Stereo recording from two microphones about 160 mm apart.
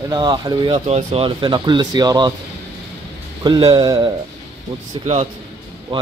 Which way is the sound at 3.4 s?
25° right (ahead or behind).